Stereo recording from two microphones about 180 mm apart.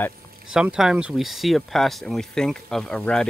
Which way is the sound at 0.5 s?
5° right (ahead or behind).